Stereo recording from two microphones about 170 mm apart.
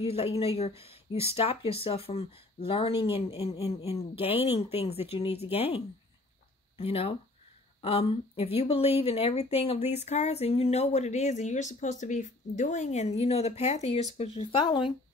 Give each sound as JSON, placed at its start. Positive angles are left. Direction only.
{"t": 0.0, "sound": "speech", "side_deg": 35}
{"t": 6.8, "sound": "speech", "side_deg": 35}